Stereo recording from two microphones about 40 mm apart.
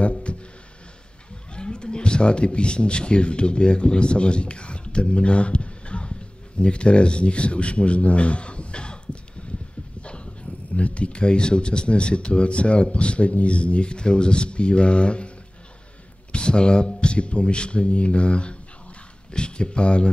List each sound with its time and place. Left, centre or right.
0.0 s music: left
1.5 s speech: left